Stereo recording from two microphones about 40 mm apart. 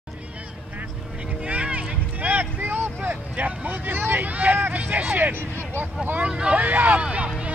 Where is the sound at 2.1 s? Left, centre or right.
Right.